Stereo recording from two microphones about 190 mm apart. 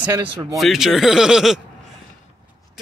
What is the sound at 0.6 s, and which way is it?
Speech, centre (ahead or behind).